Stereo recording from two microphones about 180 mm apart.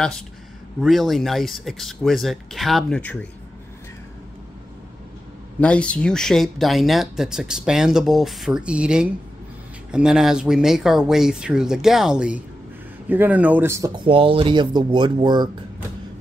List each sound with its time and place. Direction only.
0.7 s speech: centre (ahead or behind)
5.6 s speech: 5° left (ahead or behind); by 15.5 s 25° right (ahead or behind)